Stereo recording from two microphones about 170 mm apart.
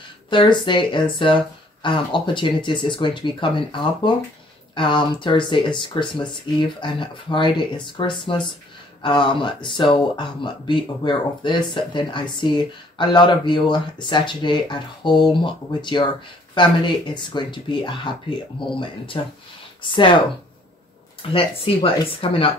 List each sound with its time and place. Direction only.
0.3 s speech: 30° left (ahead or behind)
21.2 s speech: 30° left (ahead or behind)